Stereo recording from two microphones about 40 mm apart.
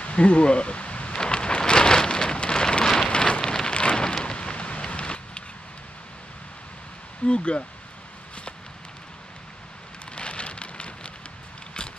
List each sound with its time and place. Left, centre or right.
0.0 s a sound: left
1.2 s rain on surface: left
7.2 s speech: left
10.1 s rain on surface: left